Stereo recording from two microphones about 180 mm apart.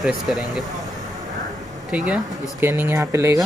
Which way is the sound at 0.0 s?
Centre (ahead or behind).